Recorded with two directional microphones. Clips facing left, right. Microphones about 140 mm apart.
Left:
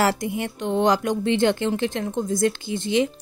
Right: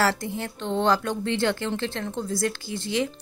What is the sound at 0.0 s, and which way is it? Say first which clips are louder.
A woman's voice: left 3 dB; 15° left (ahead or behind).